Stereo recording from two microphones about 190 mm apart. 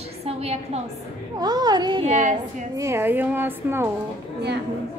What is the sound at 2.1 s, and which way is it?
Speech, 40° right (ahead or behind).